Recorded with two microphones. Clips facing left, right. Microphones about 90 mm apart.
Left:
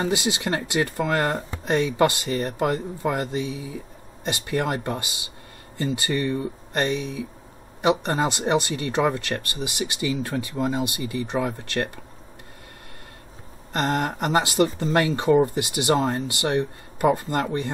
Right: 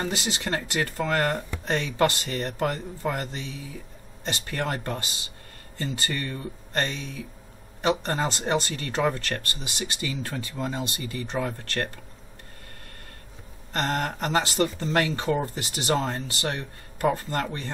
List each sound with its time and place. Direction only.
0.0 s speech: 15° left (ahead or behind)
13.7 s speech: 15° left (ahead or behind)